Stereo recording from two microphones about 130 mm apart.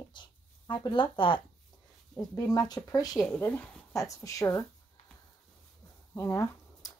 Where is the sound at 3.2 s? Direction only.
10° left (ahead or behind).